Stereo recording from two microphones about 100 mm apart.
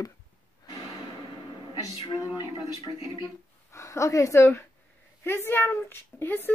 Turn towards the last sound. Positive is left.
turn(degrees=20)  # may be behind; listen again after turning